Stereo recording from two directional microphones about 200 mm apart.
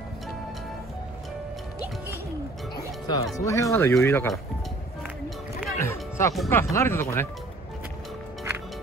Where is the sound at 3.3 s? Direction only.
15° left (ahead or behind).